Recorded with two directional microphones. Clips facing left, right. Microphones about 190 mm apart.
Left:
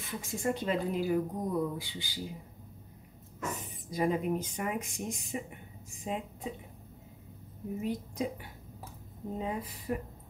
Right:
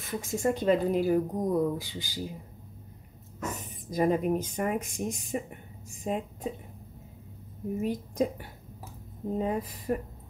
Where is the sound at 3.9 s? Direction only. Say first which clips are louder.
Right 4 dB; 45° right (ahead or behind).